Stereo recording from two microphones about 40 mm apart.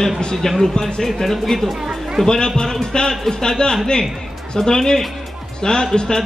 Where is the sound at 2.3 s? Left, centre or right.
Centre.